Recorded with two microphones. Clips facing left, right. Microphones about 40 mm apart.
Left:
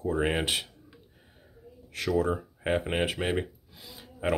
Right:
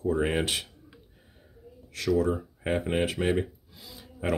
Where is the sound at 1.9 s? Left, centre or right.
Centre.